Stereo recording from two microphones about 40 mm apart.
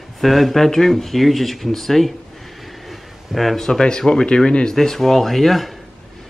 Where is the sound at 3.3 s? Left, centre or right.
Centre.